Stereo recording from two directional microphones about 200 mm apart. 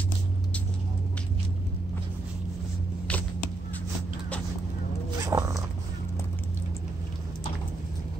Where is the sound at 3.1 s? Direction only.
10° left (ahead or behind).